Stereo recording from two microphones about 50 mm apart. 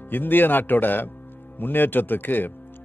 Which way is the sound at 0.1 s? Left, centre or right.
Left.